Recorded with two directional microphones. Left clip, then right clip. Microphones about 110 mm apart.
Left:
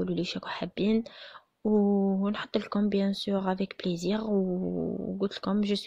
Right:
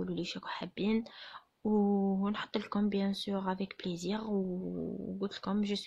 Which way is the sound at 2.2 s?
35° left (ahead or behind).